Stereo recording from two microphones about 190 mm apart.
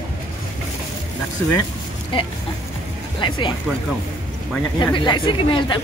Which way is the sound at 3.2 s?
25° left (ahead or behind).